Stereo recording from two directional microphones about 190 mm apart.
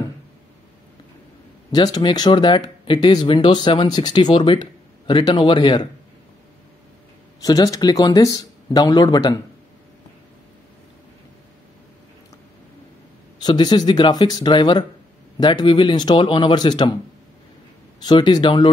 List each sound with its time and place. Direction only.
1.7 s speech: 20° left (ahead or behind)
7.3 s speech: 20° left (ahead or behind)
13.4 s speech: 20° left (ahead or behind)
18.0 s speech: 20° left (ahead or behind)